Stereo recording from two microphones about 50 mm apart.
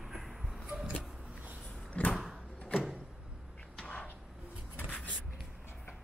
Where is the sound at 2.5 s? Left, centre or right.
Left.